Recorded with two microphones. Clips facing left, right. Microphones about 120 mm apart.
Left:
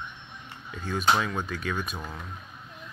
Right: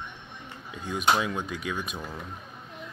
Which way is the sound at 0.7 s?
15° right (ahead or behind).